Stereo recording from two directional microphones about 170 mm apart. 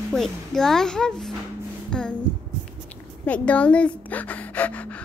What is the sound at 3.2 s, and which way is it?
Speech, 10° left (ahead or behind).